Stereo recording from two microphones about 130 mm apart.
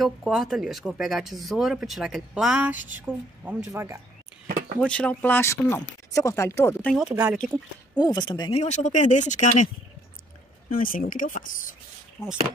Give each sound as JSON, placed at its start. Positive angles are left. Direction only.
{"t": 0.0, "sound": "speech", "side_deg": 0}
{"t": 4.7, "sound": "speech", "side_deg": 10}
{"t": 7.1, "sound": "speech", "side_deg": -5}
{"t": 8.0, "sound": "a woman's voice", "side_deg": 30}
{"t": 8.5, "sound": "speech", "side_deg": 65}
{"t": 10.7, "sound": "speech", "side_deg": 90}
{"t": 12.2, "sound": "a woman's voice", "side_deg": 30}